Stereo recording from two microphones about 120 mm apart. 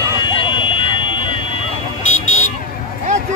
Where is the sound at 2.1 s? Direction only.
85° left.